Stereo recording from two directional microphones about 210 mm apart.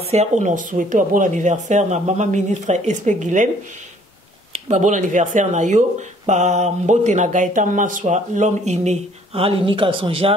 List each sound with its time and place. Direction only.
0.0 s speech: 30° right (ahead or behind)
4.5 s speech: 35° right (ahead or behind)